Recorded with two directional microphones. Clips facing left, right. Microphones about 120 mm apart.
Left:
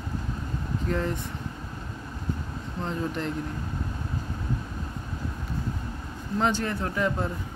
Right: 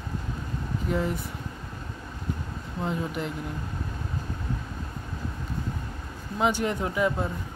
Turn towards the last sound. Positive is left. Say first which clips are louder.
# right 1 dB
turn(degrees=-5)  # may be behind; listen again after turning